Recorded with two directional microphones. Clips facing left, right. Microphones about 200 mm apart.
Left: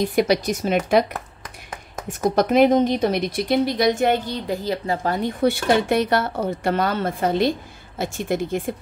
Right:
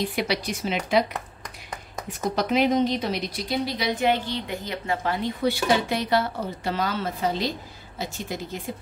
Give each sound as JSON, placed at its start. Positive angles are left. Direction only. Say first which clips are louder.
{"t": 0.0, "sound": "a woman's voice", "louder": "left 7 dB", "side_deg": 45}
{"t": 2.0, "sound": "a woman's voice", "louder": "left 6 dB", "side_deg": 50}
{"t": 5.4, "sound": "a woman's voice", "louder": "left 4 dB", "side_deg": 60}